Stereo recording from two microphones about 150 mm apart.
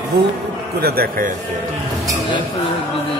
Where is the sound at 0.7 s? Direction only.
90° right.